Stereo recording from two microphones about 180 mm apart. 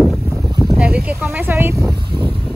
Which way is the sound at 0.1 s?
Centre (ahead or behind).